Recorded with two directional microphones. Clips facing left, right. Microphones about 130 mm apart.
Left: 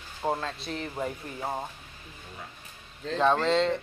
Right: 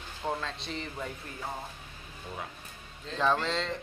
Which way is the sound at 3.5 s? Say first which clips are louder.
Left 8 dB; centre (ahead or behind).